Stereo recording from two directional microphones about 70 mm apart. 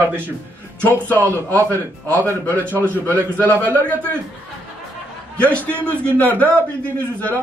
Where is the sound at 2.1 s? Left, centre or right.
Right.